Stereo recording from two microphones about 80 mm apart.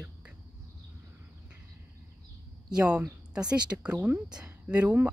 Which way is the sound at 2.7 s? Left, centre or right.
Centre.